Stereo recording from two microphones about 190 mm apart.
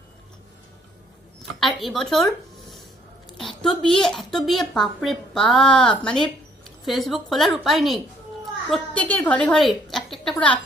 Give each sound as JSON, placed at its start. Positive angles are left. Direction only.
{"t": 1.6, "sound": "a woman's voice", "side_deg": 0}